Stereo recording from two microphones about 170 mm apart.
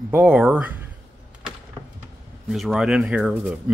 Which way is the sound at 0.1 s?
5° right (ahead or behind).